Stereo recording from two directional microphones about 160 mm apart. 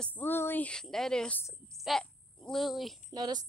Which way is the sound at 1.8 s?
Centre (ahead or behind).